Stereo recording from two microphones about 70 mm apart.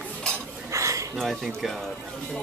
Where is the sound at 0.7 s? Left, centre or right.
Right.